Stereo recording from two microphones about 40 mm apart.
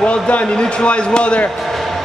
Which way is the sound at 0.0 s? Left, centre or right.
Left.